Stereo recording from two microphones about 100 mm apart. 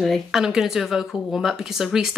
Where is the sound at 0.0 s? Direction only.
Centre (ahead or behind).